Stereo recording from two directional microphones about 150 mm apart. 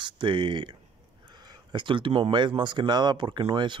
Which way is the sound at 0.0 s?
35° right (ahead or behind).